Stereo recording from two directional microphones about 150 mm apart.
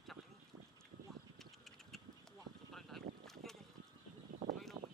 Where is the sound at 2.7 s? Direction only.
Centre (ahead or behind).